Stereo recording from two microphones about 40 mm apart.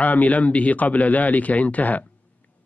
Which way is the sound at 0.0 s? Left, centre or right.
Left.